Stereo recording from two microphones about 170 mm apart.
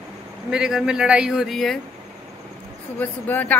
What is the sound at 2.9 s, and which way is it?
Speech, 10° left (ahead or behind).